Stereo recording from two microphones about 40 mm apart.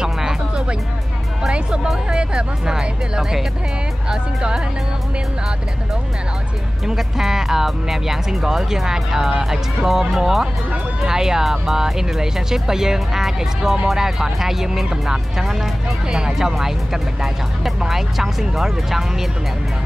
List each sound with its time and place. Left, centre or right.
0.0 s music: centre
2.0 s speech: right
6.9 s speech: centre